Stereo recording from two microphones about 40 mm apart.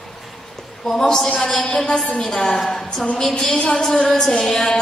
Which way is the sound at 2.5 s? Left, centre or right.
Centre.